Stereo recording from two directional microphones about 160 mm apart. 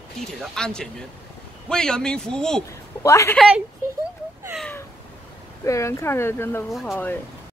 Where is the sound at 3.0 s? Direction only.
20° left (ahead or behind).